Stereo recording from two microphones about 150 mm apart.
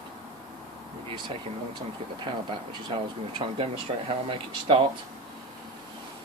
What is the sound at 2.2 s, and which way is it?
Speech, 35° right (ahead or behind).